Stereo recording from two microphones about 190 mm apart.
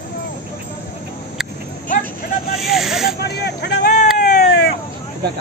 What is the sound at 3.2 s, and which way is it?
Vehicle, 60° left (ahead or behind).